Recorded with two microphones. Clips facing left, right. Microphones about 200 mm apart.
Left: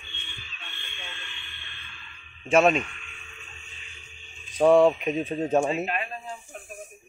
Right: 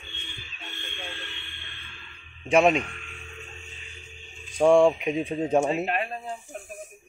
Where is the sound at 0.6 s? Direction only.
35° right (ahead or behind).